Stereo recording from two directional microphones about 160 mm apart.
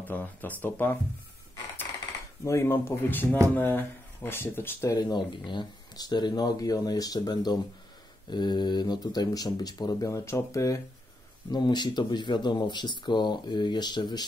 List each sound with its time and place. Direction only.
0.0 s speech: 10° left (ahead or behind)
2.4 s speech: 15° left (ahead or behind)